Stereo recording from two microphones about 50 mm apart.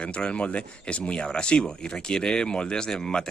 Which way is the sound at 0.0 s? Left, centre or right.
Left.